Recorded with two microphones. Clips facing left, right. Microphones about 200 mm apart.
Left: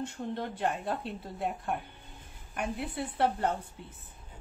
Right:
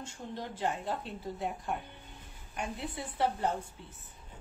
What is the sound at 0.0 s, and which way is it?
Speech, 60° left (ahead or behind).